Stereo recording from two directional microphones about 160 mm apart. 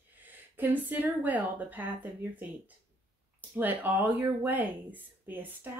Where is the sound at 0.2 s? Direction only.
10° right (ahead or behind).